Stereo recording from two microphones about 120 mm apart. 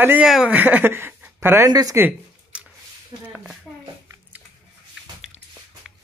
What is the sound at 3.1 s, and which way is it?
Speech, 35° right (ahead or behind).